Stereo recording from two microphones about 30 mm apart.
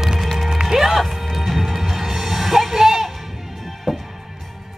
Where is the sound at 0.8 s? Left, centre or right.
Centre.